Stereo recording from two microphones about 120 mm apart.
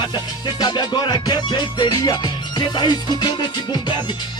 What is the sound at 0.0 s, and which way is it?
Music, 35° left (ahead or behind).